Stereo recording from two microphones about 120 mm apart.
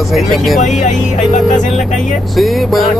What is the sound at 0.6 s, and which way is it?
Speech, 85° left.